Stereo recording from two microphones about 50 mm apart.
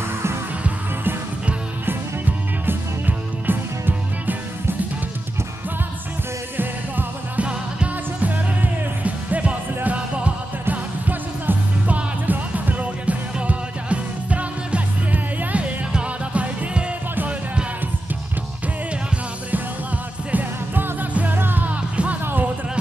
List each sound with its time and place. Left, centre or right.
1.9 s music: right
6.5 s music: right
7.3 s music: right
20.2 s music: right
21.9 s music: right
22.2 s music: right